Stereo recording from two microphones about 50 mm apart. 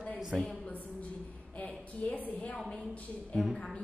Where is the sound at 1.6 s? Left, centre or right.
Left.